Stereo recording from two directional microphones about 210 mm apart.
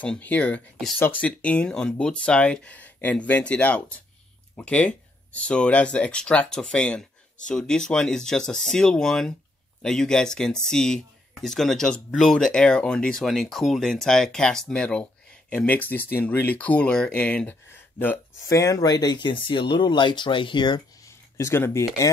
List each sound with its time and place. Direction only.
0.0 s speech: 5° left (ahead or behind)